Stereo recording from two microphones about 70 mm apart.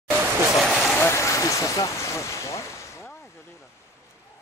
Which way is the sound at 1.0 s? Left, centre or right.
Left.